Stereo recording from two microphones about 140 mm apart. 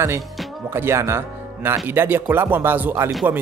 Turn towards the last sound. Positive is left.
turn(degrees=-15)  # may be behind; listen again after turning